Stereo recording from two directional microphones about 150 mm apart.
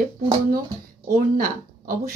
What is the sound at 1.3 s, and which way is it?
Speech, 65° right (ahead or behind).